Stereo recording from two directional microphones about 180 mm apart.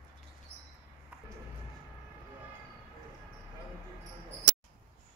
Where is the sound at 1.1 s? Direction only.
5° right (ahead or behind).